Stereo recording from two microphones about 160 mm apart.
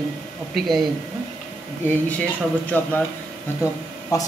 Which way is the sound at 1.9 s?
10° left (ahead or behind).